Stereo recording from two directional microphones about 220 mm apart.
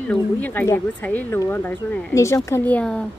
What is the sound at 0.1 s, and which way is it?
Speech, 5° left (ahead or behind).